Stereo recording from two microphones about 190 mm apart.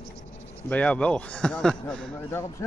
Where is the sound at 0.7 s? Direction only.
10° left (ahead or behind).